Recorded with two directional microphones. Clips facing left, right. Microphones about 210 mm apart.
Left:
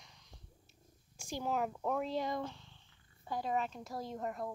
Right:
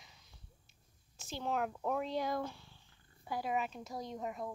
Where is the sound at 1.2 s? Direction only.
15° left (ahead or behind).